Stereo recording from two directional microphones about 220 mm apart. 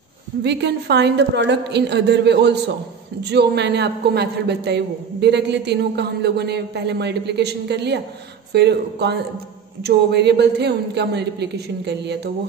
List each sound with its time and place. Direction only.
0.4 s a man's voice: 50° right (ahead or behind)